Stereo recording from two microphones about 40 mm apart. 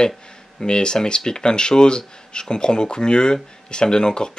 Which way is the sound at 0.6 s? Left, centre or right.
Left.